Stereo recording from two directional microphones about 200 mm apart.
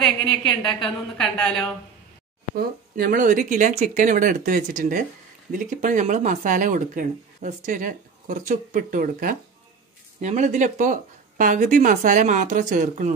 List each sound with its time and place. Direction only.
0.3 s a woman's voice: 25° left (ahead or behind)
0.6 s a woman's voice: centre (ahead or behind)
2.5 s speech: 45° right (ahead or behind)